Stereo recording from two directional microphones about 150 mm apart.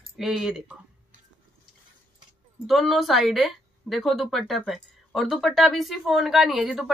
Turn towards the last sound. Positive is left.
turn(degrees=0)  # may be behind; listen again after turning